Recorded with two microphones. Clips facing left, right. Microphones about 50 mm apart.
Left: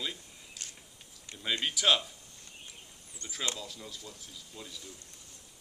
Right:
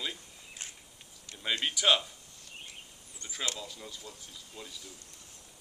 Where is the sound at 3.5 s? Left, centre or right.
Centre.